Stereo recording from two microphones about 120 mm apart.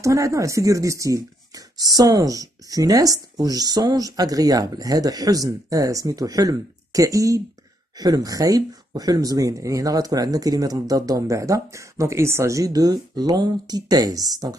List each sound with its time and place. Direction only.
0.0 s speech: 25° right (ahead or behind)